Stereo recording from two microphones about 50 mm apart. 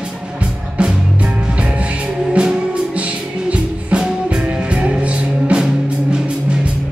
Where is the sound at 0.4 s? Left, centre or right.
Right.